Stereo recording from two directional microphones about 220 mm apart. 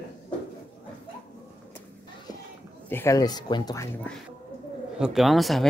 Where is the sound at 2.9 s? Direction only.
10° left (ahead or behind).